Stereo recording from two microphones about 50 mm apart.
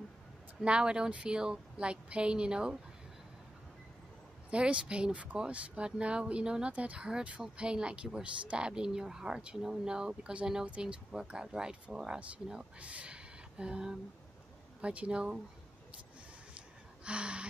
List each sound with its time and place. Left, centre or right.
0.6 s speech: centre
4.5 s speech: right
12.8 s speech: right
16.5 s gasp: right